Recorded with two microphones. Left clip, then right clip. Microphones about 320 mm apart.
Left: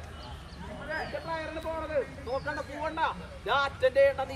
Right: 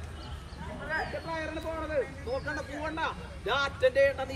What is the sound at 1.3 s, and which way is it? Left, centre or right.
Speech, centre.